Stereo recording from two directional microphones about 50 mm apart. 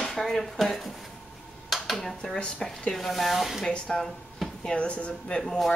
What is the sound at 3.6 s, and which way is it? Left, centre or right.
Speech, centre.